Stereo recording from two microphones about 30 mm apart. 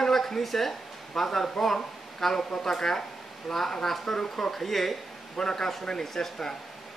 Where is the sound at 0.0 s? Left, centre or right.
Centre.